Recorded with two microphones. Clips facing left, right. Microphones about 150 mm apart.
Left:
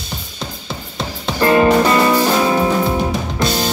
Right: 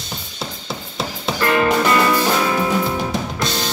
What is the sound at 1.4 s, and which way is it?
Music, 30° left (ahead or behind).